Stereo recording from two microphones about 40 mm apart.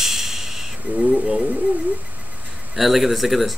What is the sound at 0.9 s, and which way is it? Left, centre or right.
Speech, right.